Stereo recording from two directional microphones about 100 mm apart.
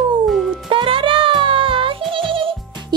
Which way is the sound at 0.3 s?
Centre (ahead or behind).